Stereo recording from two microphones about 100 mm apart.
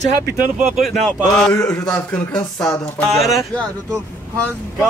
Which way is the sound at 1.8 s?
15° left (ahead or behind).